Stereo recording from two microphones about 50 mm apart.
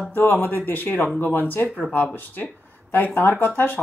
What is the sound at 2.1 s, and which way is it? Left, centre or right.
Speech, left.